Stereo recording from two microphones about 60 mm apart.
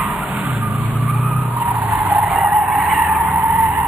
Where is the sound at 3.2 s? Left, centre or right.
Right.